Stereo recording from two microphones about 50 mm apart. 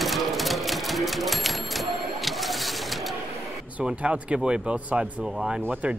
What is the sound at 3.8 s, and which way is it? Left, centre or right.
Speech, right.